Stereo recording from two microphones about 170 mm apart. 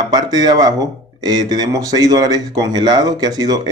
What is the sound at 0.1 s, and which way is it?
A man's voice, 25° right (ahead or behind).